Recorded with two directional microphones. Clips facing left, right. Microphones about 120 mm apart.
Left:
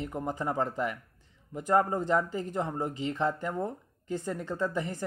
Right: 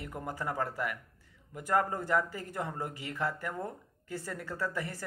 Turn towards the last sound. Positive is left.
turn(degrees=20)  # may be behind; listen again after turning